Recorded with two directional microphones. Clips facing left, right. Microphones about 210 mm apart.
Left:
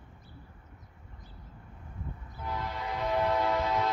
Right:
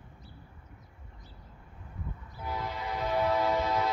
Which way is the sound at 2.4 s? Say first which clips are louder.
Even; 5° right (ahead or behind).